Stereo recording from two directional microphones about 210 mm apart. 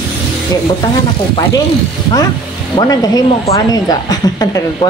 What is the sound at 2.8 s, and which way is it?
Speech, 15° left (ahead or behind).